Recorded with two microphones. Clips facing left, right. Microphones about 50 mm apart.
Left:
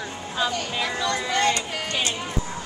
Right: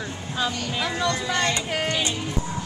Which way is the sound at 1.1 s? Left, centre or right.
Left.